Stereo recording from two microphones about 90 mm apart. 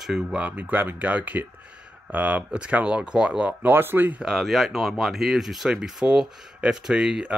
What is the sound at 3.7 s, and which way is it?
Speech, 25° right (ahead or behind).